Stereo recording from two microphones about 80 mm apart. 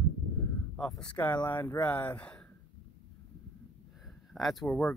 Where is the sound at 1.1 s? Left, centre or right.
Left.